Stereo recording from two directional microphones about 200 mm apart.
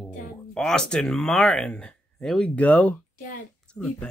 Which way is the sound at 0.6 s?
5° left (ahead or behind).